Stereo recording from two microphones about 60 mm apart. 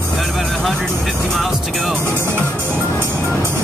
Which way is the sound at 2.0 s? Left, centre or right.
Right.